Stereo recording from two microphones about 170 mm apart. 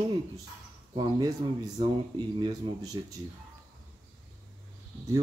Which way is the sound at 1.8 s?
25° right (ahead or behind).